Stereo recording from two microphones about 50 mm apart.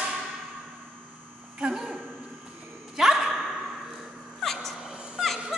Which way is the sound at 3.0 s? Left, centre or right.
Centre.